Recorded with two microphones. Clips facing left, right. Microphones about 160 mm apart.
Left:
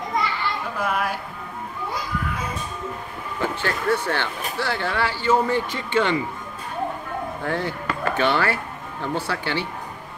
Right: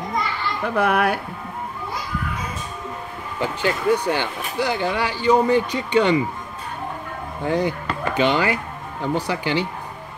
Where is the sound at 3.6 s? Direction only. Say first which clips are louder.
Right 5 dB; 15° right (ahead or behind).